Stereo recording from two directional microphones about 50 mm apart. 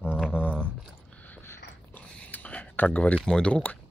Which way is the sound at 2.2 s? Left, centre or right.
Left.